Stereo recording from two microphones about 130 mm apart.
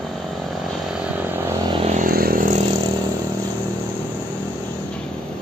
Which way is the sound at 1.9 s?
85° right.